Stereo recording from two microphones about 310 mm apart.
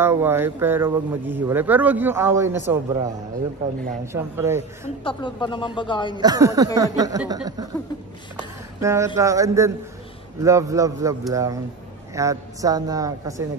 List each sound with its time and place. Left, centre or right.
0.0 s speech: centre
4.8 s a woman's voice: centre
6.1 s speech: centre
8.8 s speech: centre